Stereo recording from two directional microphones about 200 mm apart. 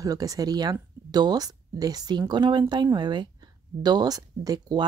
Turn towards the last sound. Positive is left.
turn(degrees=-20)  # may be behind; listen again after turning